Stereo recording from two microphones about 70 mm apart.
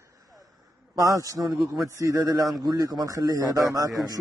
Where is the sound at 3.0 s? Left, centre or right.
Right.